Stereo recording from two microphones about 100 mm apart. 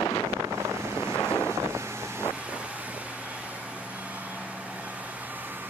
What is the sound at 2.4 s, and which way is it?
Vehicle, 15° right (ahead or behind).